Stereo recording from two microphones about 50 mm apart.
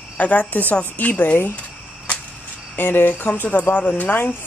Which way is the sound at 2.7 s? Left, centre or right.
Left.